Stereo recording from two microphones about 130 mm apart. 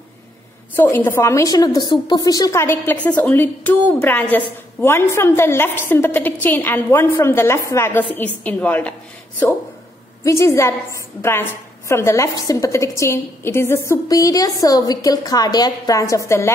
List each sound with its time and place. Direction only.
0.7 s a woman's voice: 15° left (ahead or behind)
10.2 s a woman's voice: 20° left (ahead or behind)